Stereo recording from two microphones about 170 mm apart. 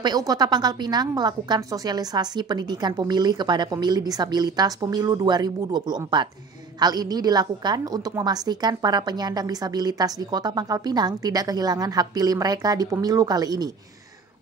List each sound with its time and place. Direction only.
0.0 s a woman's voice: 25° right (ahead or behind)